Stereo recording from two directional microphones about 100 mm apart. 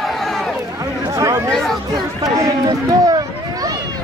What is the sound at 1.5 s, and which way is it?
Chatter, 5° left (ahead or behind).